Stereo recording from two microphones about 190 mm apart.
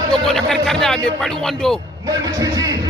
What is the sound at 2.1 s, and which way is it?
Speech, 20° right (ahead or behind).